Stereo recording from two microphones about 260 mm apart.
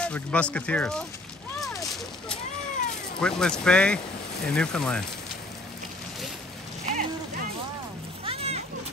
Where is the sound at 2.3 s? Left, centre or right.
Left.